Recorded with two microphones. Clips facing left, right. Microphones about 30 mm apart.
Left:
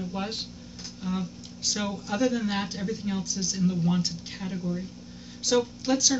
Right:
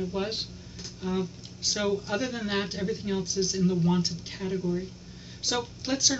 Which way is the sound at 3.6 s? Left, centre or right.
Centre.